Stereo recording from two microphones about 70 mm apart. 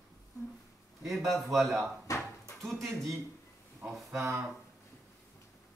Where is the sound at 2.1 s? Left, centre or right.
Left.